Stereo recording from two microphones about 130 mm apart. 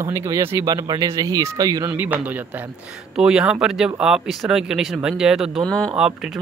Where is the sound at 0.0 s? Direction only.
25° right (ahead or behind).